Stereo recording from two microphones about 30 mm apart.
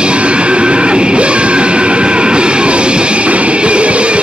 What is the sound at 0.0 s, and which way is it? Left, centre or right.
Music, right.